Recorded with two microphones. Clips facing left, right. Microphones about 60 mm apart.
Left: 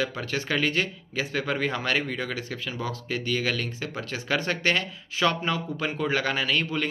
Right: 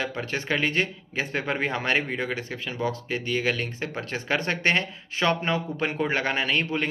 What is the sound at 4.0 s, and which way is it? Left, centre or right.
Speech, right.